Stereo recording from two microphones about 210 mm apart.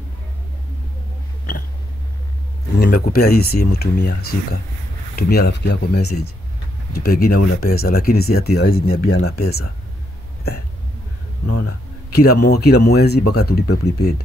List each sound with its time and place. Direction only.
2.8 s speech: 45° left (ahead or behind)
11.6 s speech: 50° left (ahead or behind)